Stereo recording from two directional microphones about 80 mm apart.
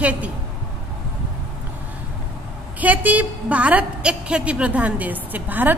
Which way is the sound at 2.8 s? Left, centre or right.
Centre.